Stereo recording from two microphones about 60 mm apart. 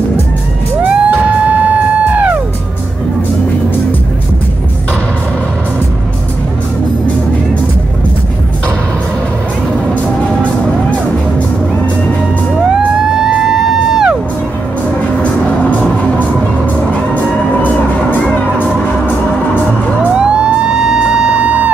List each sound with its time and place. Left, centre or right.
0.8 s music: right
12.7 s music: centre
15.6 s music: left
20.0 s music: centre